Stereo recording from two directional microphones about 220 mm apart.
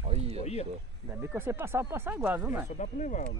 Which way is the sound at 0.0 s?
25° right (ahead or behind).